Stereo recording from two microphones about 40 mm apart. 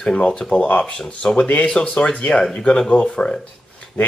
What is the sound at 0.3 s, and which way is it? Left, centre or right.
Speech, left.